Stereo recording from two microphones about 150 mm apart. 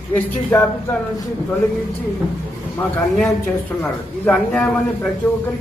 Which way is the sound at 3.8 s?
10° left (ahead or behind).